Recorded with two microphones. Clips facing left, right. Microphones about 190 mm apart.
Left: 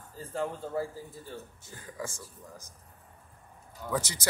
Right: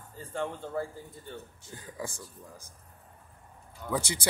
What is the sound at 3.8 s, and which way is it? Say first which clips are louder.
Speech: even; 10° left (ahead or behind).